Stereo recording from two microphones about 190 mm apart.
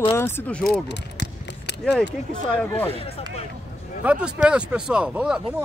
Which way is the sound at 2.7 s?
30° left (ahead or behind).